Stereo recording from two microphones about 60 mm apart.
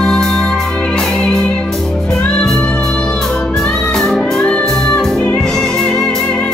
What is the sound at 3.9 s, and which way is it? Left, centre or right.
Music, centre.